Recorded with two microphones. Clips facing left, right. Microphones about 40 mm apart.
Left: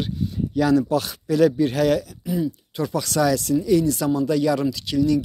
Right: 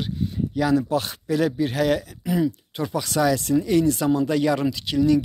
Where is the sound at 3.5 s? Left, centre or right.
Right.